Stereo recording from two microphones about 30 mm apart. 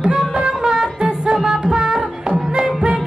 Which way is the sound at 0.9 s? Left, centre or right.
Right.